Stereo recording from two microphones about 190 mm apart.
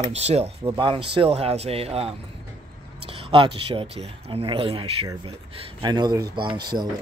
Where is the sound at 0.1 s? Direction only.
35° right (ahead or behind).